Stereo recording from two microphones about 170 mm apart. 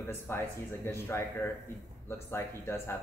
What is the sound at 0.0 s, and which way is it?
Speech, 15° left (ahead or behind).